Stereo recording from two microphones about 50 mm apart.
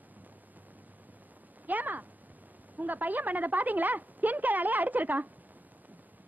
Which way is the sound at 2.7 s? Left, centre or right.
Right.